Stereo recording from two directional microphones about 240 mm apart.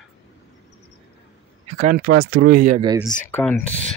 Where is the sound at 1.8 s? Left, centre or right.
Right.